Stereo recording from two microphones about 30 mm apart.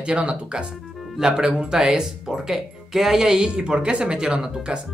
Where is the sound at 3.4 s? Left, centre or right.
Right.